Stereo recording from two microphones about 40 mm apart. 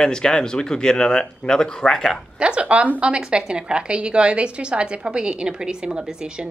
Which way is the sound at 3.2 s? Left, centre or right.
Right.